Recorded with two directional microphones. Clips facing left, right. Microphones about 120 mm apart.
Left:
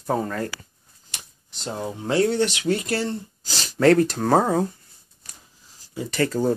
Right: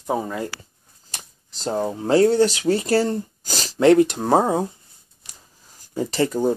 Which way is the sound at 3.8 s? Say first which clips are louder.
Right 2 dB; 15° right (ahead or behind).